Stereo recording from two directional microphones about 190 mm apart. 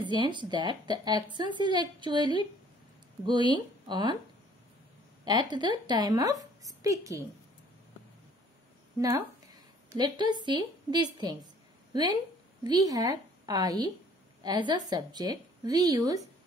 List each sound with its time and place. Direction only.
0.0 s a woman's voice: 25° right (ahead or behind)
5.2 s a woman's voice: 25° right (ahead or behind)
9.0 s a woman's voice: 20° right (ahead or behind)